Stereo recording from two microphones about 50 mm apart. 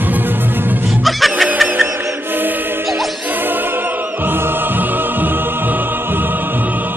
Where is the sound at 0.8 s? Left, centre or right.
Centre.